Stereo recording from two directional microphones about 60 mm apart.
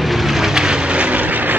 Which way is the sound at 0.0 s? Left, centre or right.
Centre.